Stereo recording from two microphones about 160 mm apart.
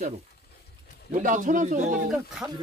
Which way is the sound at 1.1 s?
55° right (ahead or behind).